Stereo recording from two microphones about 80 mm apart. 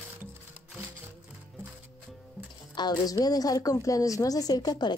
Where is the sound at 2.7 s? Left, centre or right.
Left.